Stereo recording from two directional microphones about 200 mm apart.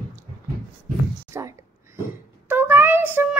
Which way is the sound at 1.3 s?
15° right (ahead or behind).